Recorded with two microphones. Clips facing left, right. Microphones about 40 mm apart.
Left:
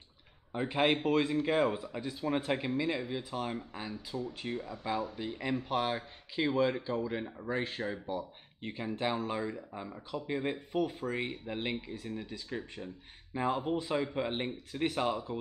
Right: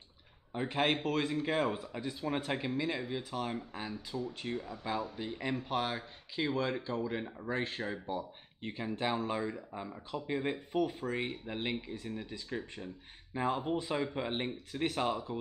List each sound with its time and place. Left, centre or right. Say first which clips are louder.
0.5 s speech: left 2 dB; centre